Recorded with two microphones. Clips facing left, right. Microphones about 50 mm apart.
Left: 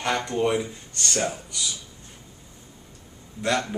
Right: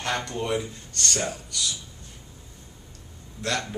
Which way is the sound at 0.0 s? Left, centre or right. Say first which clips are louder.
Left 5 dB; centre.